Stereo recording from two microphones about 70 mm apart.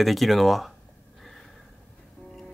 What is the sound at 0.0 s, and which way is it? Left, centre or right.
Speech, centre.